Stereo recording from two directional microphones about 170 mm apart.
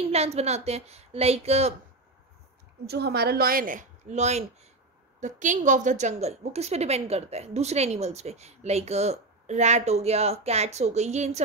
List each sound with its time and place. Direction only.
0.1 s a woman's voice: 40° right (ahead or behind)
2.9 s a woman's voice: 70° right (ahead or behind); by 11.4 s 40° right (ahead or behind)